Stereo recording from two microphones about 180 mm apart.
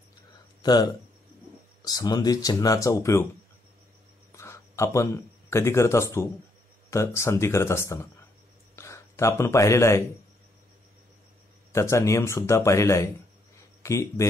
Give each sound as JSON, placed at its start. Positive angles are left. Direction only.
{"t": 0.6, "sound": "speech", "side_deg": 20}
{"t": 4.4, "sound": "a man's voice", "side_deg": 15}
{"t": 11.7, "sound": "speech", "side_deg": 15}